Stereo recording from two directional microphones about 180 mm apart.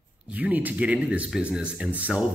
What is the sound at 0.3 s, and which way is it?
Speech, 10° right (ahead or behind).